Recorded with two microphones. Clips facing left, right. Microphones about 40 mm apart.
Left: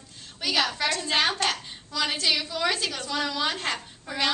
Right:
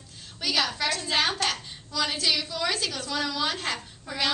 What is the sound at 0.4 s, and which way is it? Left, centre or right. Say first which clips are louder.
A woman's voice: left 1 dB; centre.